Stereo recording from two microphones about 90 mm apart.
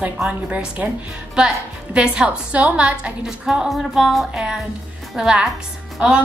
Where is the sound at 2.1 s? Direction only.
15° right (ahead or behind).